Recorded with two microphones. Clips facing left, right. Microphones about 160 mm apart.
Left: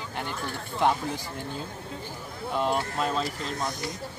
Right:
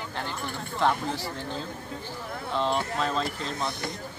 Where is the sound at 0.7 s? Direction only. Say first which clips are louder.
Left 1 dB; 15° left (ahead or behind).